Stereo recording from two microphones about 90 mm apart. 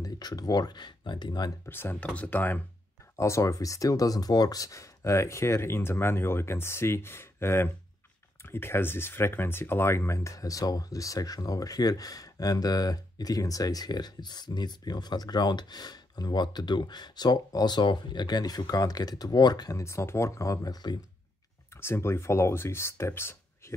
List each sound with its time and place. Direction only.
0.0 s speech: 45° left (ahead or behind)
1.7 s speech: 25° left (ahead or behind)
3.2 s speech: 35° left (ahead or behind)
19.8 s speech: 30° left (ahead or behind); by 21.0 s 50° left (ahead or behind)
21.7 s speech: 30° left (ahead or behind)